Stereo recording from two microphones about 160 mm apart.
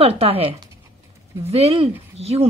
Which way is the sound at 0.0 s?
40° right (ahead or behind).